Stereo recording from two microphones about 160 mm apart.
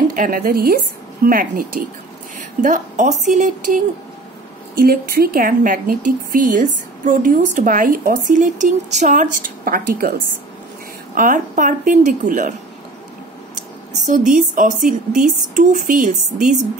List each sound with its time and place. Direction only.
0.1 s a woman's voice: 60° right (ahead or behind)
4.7 s a woman's voice: 70° right (ahead or behind); by 12.5 s 55° right (ahead or behind)
14.0 s speech: 55° right (ahead or behind)